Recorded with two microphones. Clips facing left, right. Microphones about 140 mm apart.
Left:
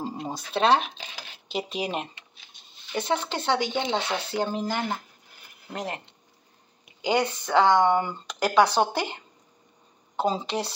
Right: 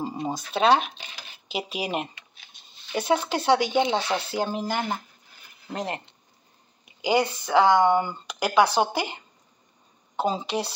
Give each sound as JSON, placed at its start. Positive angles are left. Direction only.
{"t": 0.0, "sound": "speech", "side_deg": 0}
{"t": 7.0, "sound": "speech", "side_deg": -5}